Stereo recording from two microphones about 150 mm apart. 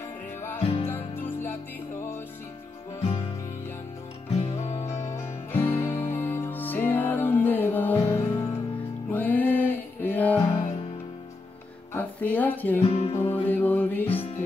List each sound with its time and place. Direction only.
0.6 s music: 40° left (ahead or behind)
0.8 s music: 15° left (ahead or behind)
4.3 s music: 45° left (ahead or behind)
5.5 s music: 15° left (ahead or behind)
10.5 s music: 40° left (ahead or behind)
11.9 s music: 10° left (ahead or behind)
12.8 s music: 40° left (ahead or behind)
13.5 s music: 10° left (ahead or behind)
14.0 s music: 40° left (ahead or behind)